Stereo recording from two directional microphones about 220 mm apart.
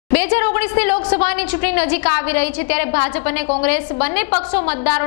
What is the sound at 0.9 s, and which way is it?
Speech, 25° left (ahead or behind).